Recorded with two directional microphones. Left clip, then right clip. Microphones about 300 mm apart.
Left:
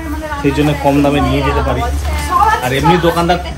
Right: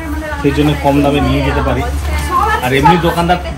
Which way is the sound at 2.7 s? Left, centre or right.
Centre.